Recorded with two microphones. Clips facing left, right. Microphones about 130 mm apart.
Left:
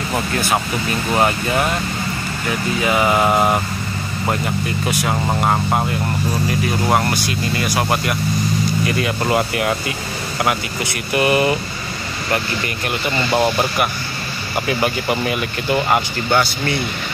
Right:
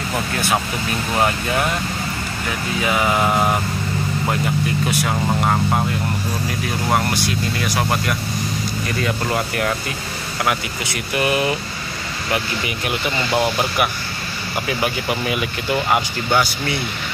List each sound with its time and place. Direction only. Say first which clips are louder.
1.1 s speech: left 2 dB; 5° left (ahead or behind)
2.8 s speech: left 2 dB; 5° left (ahead or behind)
5.5 s speech: left 1 dB; 15° left (ahead or behind)
6.9 s speech: right 1 dB; centre (ahead or behind)